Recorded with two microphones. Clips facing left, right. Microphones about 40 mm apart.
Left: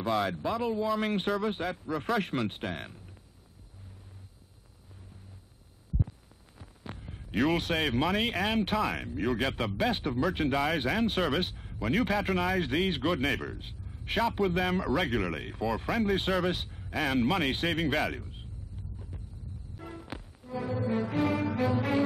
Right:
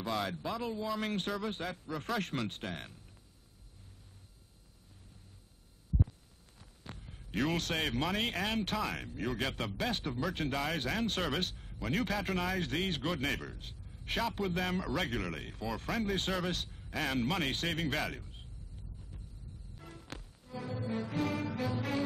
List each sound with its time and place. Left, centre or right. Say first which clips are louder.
0.0 s speech: left 6 dB; centre
6.6 s heart sounds: left 6 dB; centre
7.8 s speech: left 5 dB; centre
19.8 s music: left 7 dB; centre